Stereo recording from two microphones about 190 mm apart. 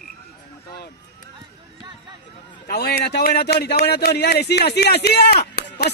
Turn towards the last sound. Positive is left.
turn(degrees=55)  # may be behind; listen again after turning